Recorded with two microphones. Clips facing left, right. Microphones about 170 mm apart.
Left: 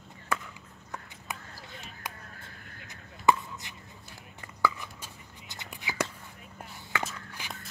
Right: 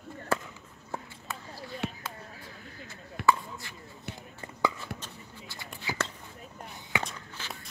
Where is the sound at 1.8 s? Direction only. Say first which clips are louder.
Right 14 dB; 65° right (ahead or behind).